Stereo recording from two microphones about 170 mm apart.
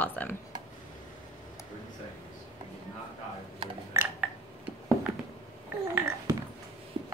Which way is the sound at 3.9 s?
15° right (ahead or behind).